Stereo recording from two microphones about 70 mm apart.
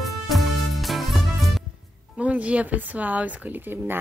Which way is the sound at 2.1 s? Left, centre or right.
Centre.